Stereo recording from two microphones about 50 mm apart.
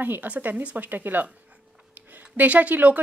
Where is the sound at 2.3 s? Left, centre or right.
Right.